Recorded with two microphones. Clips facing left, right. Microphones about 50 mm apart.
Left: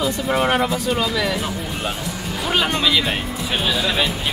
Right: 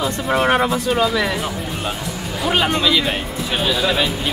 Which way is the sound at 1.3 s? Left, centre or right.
Centre.